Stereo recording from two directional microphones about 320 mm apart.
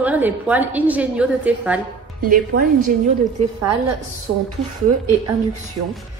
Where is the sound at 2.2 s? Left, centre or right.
Right.